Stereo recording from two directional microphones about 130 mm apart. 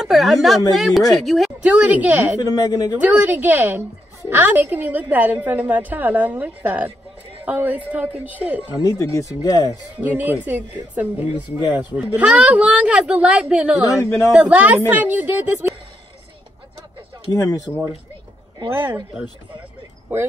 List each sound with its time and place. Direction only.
0.0 s a woman's voice: centre (ahead or behind)
1.6 s speech: 10° right (ahead or behind)
2.4 s speech: 30° left (ahead or behind)
3.0 s speech: 10° right (ahead or behind)
8.8 s speech: 25° left (ahead or behind)
9.9 s speech: 15° right (ahead or behind)
17.3 s speech: 30° left (ahead or behind)
18.7 s speech: 15° right (ahead or behind)